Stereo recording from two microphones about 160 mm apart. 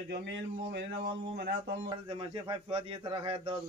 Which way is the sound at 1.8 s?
30° right (ahead or behind).